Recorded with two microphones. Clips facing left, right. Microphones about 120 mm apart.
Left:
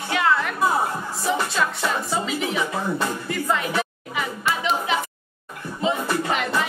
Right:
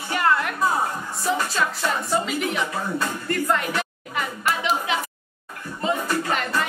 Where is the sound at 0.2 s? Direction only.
Centre (ahead or behind).